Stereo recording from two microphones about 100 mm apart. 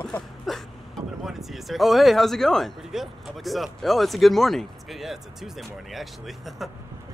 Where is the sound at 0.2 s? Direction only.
5° left (ahead or behind).